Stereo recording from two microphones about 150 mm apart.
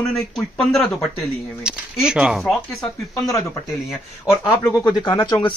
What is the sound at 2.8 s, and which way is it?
Speech, 20° left (ahead or behind).